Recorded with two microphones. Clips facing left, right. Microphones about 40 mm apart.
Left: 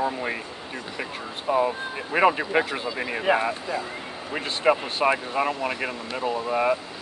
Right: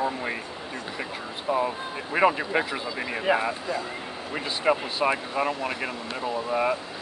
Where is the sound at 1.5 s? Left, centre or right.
Left.